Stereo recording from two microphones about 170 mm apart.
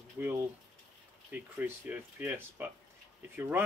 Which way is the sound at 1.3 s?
10° right (ahead or behind).